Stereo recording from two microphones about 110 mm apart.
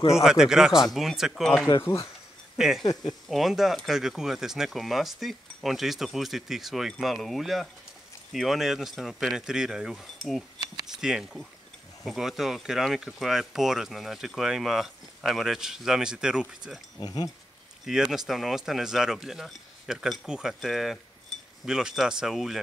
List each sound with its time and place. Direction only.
0.1 s speech: 5° right (ahead or behind)
2.8 s speech: 40° left (ahead or behind)
3.3 s speech: centre (ahead or behind)
17.0 s speech: 40° left (ahead or behind)
17.8 s speech: 5° right (ahead or behind)